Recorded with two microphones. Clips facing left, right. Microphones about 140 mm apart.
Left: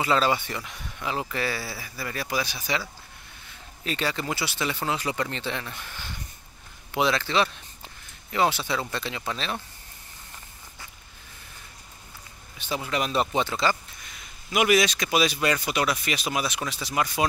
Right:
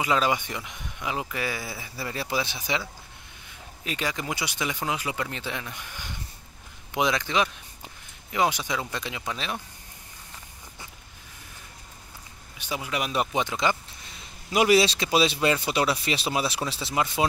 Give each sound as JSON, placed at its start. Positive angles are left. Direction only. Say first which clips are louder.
{"t": 0.0, "sound": "a man's voice", "louder": "left 1 dB", "side_deg": -15}
{"t": 12.5, "sound": "speech", "louder": "left 2 dB", "side_deg": -10}
{"t": 14.0, "sound": "a man's voice", "louder": "right 4 dB", "side_deg": -30}